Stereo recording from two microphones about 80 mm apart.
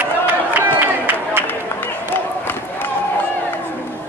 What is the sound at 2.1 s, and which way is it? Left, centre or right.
Crowd, left.